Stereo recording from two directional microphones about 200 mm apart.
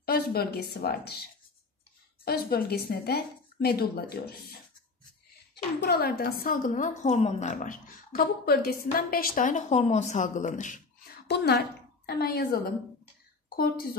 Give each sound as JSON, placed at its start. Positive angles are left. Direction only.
{"t": 0.0, "sound": "a sound", "side_deg": 50}
{"t": 0.7, "sound": "a woman's voice", "side_deg": 50}
{"t": 2.2, "sound": "a woman's voice", "side_deg": 50}
{"t": 5.5, "sound": "a woman's voice", "side_deg": 55}
{"t": 11.2, "sound": "a woman's voice", "side_deg": 55}